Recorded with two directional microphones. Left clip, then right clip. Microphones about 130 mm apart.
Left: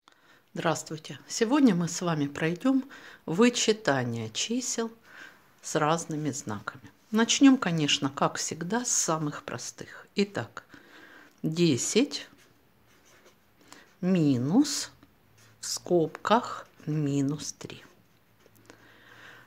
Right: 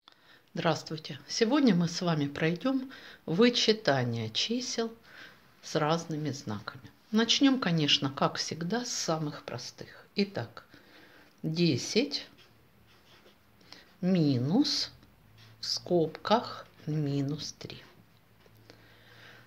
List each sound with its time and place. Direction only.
0.6 s speech: 30° left (ahead or behind)
5.6 s speech: 45° left (ahead or behind)
13.7 s speech: 40° left (ahead or behind)
18.7 s a sound: 35° left (ahead or behind)